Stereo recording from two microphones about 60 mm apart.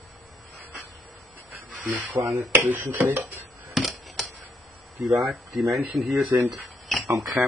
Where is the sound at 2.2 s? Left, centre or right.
Right.